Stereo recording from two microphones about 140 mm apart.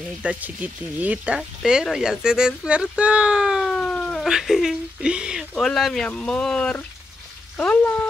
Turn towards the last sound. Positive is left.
turn(degrees=10)  # may be behind; listen again after turning